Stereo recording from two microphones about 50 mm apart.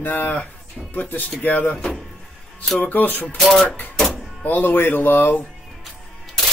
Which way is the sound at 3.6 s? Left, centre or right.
Left.